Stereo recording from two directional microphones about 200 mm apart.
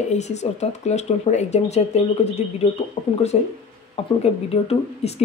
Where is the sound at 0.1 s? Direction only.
35° left (ahead or behind).